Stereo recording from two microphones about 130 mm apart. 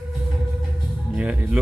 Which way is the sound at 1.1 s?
10° right (ahead or behind).